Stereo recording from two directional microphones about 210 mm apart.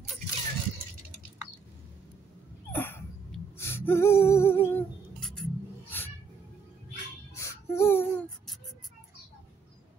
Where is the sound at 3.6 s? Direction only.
10° left (ahead or behind).